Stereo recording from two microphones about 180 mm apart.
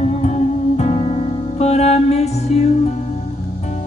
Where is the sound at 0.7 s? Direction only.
40° left (ahead or behind).